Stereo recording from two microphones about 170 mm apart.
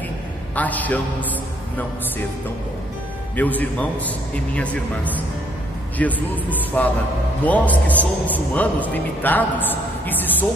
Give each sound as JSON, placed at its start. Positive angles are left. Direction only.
{"t": 0.6, "sound": "a woman's voice", "side_deg": 10}
{"t": 3.3, "sound": "a woman's voice", "side_deg": 10}